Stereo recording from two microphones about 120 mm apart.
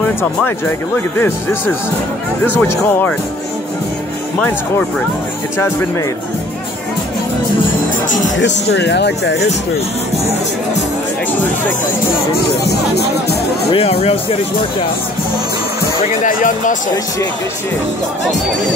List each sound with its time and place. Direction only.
0.0 s speech: 15° left (ahead or behind)
4.4 s speech: 15° left (ahead or behind)
13.7 s speech: 50° left (ahead or behind)
16.3 s speech: 90° left